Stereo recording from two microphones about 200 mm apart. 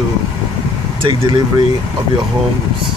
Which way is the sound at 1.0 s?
25° right (ahead or behind).